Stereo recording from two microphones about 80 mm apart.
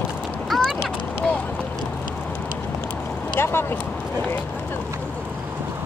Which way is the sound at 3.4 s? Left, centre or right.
Left.